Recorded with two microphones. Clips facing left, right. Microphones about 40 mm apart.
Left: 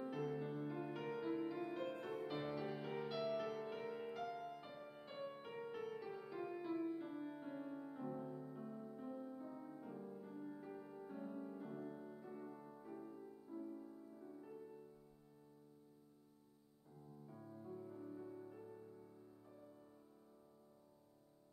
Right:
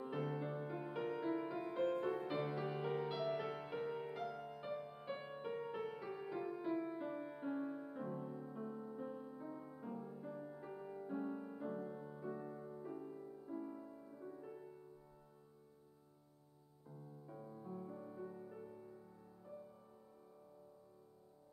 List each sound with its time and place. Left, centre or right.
0.0 s music: centre
11.3 s music: right
12.3 s music: right
12.5 s music: centre
13.5 s music: right
17.3 s music: centre